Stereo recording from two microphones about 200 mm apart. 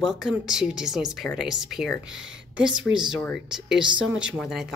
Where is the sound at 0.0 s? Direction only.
Centre (ahead or behind).